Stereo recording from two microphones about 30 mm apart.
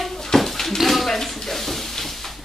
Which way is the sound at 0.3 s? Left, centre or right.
Centre.